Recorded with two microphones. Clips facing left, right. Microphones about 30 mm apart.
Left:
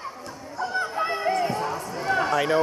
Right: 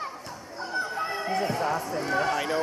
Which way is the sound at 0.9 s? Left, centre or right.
Left.